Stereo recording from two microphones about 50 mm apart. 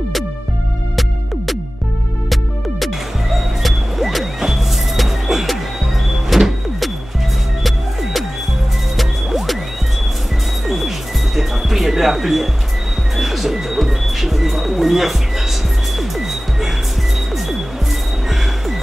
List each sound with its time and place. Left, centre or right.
0.9 s music: centre
2.8 s music: centre
6.3 s vehicle: centre
7.6 s music: centre
10.7 s music: centre
13.1 s bird: centre
16.0 s music: centre
18.3 s train: centre